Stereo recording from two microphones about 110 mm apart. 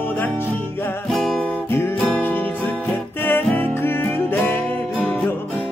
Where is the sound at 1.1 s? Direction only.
Centre (ahead or behind).